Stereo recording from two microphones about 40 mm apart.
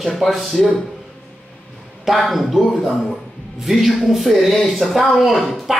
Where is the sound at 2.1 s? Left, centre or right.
Centre.